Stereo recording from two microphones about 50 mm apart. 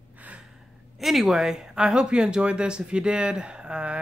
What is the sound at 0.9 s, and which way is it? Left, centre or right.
Speech, centre.